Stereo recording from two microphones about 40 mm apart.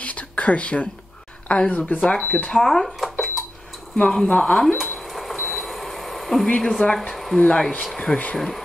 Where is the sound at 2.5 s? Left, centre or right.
Centre.